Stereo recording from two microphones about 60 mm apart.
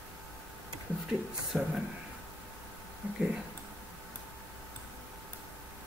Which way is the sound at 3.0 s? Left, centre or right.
Right.